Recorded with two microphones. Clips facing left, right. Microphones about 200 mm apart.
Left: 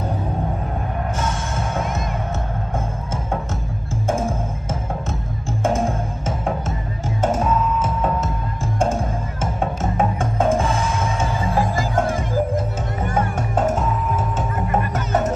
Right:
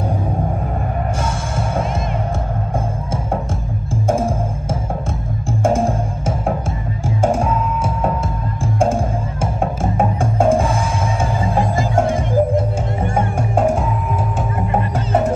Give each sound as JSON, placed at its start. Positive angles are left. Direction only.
{"t": 5.7, "sound": "music", "side_deg": -30}
{"t": 7.2, "sound": "music", "side_deg": -10}
{"t": 11.4, "sound": "music", "side_deg": -30}
{"t": 13.4, "sound": "music", "side_deg": -10}
{"t": 14.7, "sound": "music", "side_deg": -30}